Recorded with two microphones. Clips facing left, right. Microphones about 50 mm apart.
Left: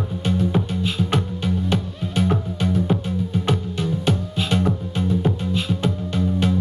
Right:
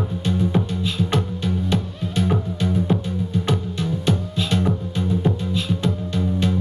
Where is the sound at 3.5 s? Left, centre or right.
Centre.